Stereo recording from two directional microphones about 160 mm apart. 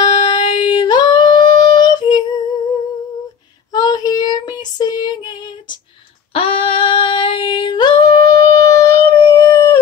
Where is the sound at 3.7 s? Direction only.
25° left (ahead or behind).